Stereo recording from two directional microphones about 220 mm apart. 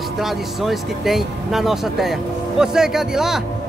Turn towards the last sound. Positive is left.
turn(degrees=0)  # may be behind; listen again after turning